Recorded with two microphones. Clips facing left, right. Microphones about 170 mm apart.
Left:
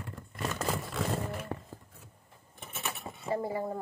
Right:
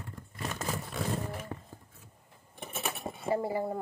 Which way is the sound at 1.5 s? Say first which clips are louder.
Left 3 dB; 65° left (ahead or behind).